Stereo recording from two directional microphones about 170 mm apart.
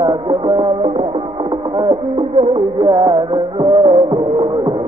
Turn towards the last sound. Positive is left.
turn(degrees=-30)  # may be behind; listen again after turning